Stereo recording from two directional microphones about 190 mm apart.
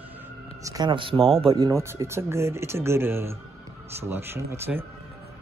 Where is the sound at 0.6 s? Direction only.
20° right (ahead or behind).